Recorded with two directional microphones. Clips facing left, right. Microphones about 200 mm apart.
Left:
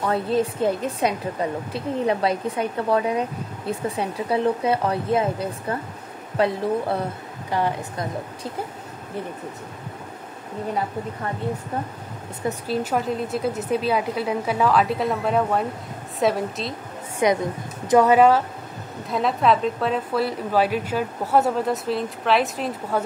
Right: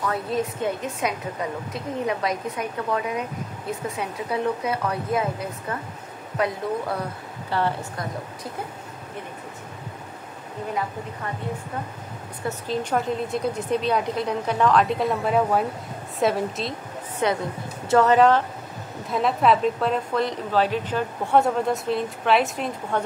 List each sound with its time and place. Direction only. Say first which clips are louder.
0.0 s a woman's voice: left 4 dB; 30° left (ahead or behind)
7.5 s speech: left 1 dB; 15° left (ahead or behind)
12.4 s a woman's voice: left 2 dB; 5° left (ahead or behind)
17.2 s a woman's voice: left 4 dB; 10° left (ahead or behind)